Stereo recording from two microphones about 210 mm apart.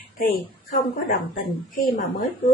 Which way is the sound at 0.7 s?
40° left (ahead or behind).